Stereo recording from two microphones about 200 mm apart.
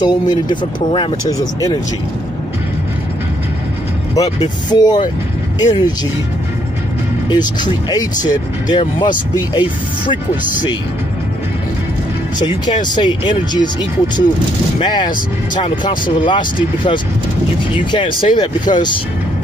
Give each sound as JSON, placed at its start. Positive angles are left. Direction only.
{"t": 0.0, "sound": "speech", "side_deg": 20}
{"t": 4.6, "sound": "speech", "side_deg": 20}
{"t": 7.2, "sound": "speech", "side_deg": 20}
{"t": 12.4, "sound": "speech", "side_deg": 20}